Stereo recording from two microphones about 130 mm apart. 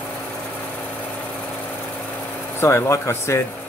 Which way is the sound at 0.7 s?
10° left (ahead or behind).